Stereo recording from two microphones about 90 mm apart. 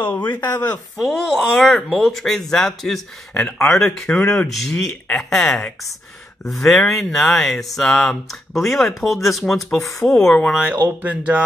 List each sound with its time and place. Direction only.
0.0 s speech: 20° left (ahead or behind)
0.9 s speech: centre (ahead or behind)
4.5 s speech: centre (ahead or behind)
11.0 s speech: 15° right (ahead or behind)